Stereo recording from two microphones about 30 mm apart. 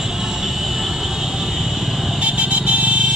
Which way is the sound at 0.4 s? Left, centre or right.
Centre.